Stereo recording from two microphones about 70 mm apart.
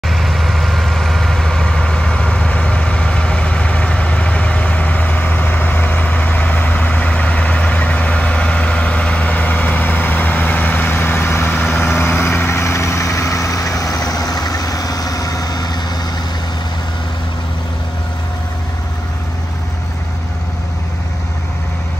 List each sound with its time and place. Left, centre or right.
0.1 s vehicle: centre; by 15.8 s left